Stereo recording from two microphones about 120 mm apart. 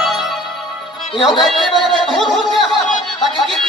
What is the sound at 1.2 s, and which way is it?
Speech, centre (ahead or behind).